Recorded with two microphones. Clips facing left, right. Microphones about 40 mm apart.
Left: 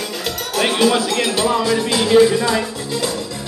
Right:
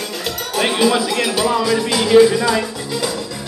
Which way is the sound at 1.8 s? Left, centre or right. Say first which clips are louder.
Right 2 dB; left.